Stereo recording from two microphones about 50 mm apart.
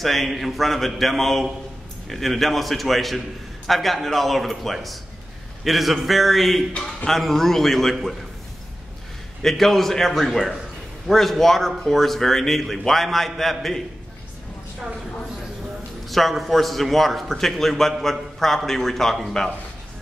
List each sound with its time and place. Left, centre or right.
0.0 s speech: centre
6.7 s a man's voice: centre
7.1 s speech: centre
9.4 s speech: centre
16.1 s speech: centre